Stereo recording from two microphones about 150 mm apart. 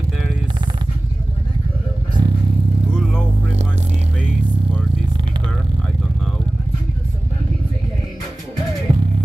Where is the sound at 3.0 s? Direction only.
Centre (ahead or behind).